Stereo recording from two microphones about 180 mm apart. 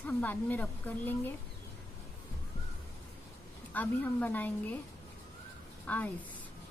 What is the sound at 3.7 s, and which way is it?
A woman's voice, 10° left (ahead or behind).